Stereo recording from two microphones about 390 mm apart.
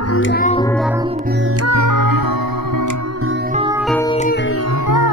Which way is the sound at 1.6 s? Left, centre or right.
Right.